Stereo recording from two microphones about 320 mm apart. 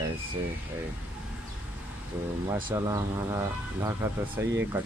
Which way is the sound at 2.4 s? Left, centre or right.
Centre.